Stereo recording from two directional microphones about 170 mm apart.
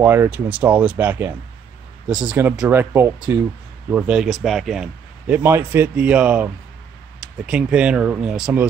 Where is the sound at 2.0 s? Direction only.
25° right (ahead or behind).